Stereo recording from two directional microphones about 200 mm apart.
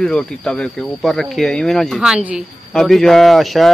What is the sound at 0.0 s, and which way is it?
Speech, 5° left (ahead or behind).